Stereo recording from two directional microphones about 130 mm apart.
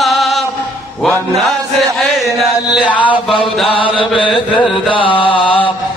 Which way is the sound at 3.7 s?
40° left (ahead or behind).